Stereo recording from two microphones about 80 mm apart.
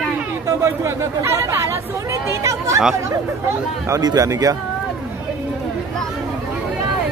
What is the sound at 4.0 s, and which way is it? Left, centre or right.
Speech, right.